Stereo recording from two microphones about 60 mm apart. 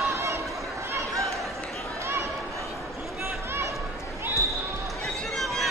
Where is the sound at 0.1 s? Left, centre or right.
Right.